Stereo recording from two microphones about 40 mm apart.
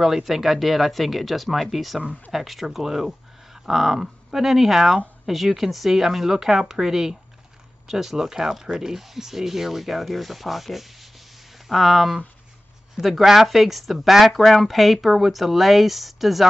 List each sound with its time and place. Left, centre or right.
0.0 s speech: centre